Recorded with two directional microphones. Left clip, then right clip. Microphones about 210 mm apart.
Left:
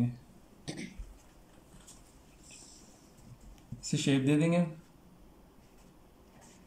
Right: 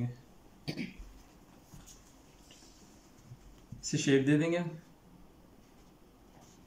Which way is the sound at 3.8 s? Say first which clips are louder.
Right 2 dB; 20° left (ahead or behind).